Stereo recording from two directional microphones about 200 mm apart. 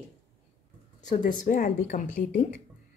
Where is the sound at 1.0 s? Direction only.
40° left (ahead or behind).